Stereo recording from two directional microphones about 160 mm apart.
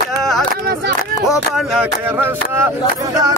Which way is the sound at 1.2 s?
Centre (ahead or behind).